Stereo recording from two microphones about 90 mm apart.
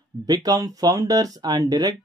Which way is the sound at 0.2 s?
40° right (ahead or behind).